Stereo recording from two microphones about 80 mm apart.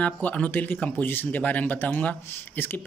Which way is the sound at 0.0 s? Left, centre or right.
Centre.